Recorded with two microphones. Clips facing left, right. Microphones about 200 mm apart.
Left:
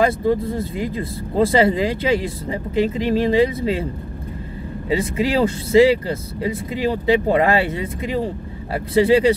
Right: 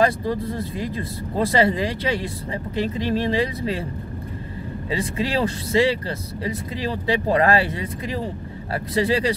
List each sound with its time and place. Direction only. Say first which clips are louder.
0.3 s speech: left 5 dB; 25° left (ahead or behind)
4.8 s speech: left 5 dB; 25° left (ahead or behind)